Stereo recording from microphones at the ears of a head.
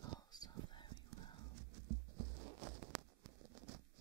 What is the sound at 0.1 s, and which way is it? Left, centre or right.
Music, right.